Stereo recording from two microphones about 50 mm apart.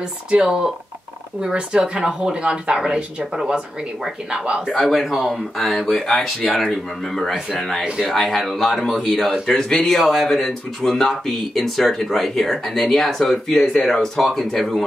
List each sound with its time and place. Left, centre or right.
0.3 s a woman's voice: centre
4.7 s speech: centre
5.0 s a woman's voice: centre
9.5 s speech: centre